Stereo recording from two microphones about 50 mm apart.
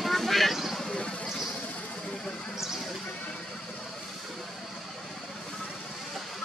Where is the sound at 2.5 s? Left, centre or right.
Centre.